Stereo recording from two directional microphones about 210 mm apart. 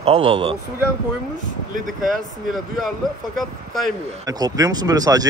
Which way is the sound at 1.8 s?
Centre (ahead or behind).